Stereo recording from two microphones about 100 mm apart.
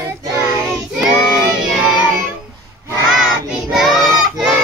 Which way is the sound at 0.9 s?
5° right (ahead or behind).